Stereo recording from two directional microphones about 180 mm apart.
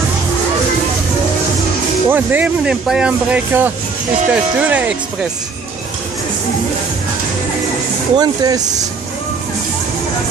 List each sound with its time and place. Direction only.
2.0 s speech: 10° right (ahead or behind)
8.2 s speech: 20° right (ahead or behind)